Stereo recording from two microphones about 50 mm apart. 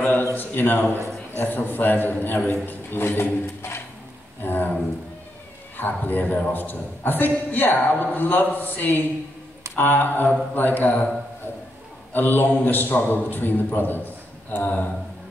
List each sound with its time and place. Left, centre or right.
0.3 s a woman's voice: left
4.4 s a sound: left
5.8 s a woman's voice: left
12.1 s a woman's voice: left